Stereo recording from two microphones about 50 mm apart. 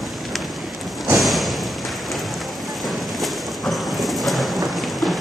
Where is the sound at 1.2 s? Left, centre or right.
Centre.